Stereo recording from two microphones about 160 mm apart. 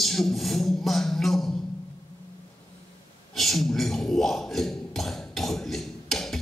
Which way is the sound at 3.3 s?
Centre (ahead or behind).